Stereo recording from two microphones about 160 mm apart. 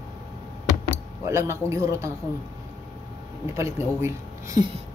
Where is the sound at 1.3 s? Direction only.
15° right (ahead or behind).